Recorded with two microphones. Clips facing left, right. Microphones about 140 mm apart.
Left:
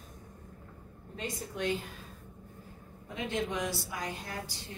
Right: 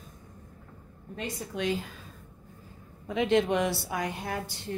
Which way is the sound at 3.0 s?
90° right.